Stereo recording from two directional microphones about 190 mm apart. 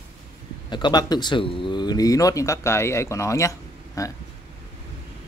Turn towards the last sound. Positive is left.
turn(degrees=15)  # may be behind; listen again after turning